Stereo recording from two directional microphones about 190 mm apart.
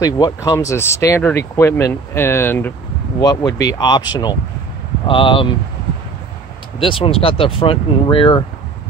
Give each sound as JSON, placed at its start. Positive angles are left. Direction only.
{"t": 0.0, "sound": "speech", "side_deg": 20}
{"t": 6.8, "sound": "speech", "side_deg": 30}